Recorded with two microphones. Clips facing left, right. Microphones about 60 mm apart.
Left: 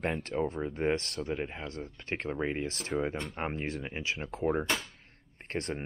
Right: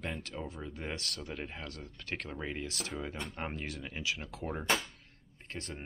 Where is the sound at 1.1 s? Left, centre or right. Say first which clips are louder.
Left 7 dB; left.